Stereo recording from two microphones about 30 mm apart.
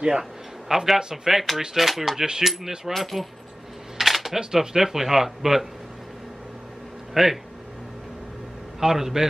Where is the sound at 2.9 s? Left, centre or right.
Centre.